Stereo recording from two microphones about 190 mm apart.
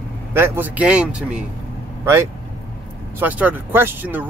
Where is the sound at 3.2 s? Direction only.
10° right (ahead or behind).